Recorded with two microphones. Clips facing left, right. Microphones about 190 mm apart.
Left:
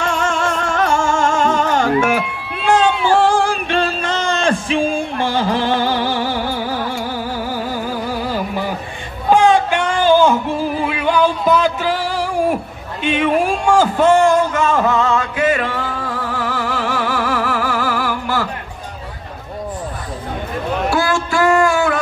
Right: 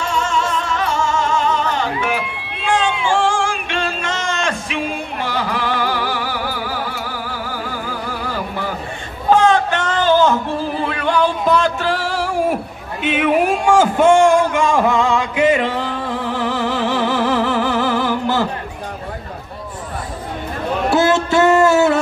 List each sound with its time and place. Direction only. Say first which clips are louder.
0.0 s music: left 1 dB; 55° left (ahead or behind); by 7.0 s 25° left (ahead or behind)
8.3 s a sound: left 3 dB; 15° left (ahead or behind); by 18.5 s 20° right (ahead or behind)
20.9 s music: right 6 dB; 20° right (ahead or behind)